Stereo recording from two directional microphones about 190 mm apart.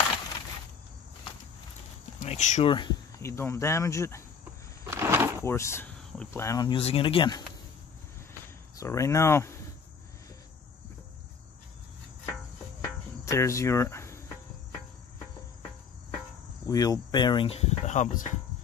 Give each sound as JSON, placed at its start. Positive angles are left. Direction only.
{"t": 2.1, "sound": "speech", "side_deg": 35}
{"t": 2.7, "sound": "speech", "side_deg": 20}
{"t": 4.8, "sound": "a sound", "side_deg": -10}
{"t": 5.4, "sound": "speech", "side_deg": 15}
{"t": 6.8, "sound": "speech", "side_deg": 30}
{"t": 8.7, "sound": "speech", "side_deg": 15}
{"t": 13.2, "sound": "speech", "side_deg": 15}
{"t": 16.6, "sound": "speech", "side_deg": 20}